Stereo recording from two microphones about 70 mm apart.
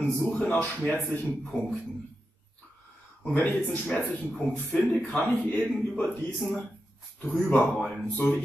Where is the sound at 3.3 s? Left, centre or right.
Left.